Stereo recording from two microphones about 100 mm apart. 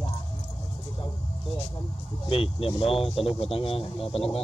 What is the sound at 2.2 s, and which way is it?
Speech, 65° left (ahead or behind).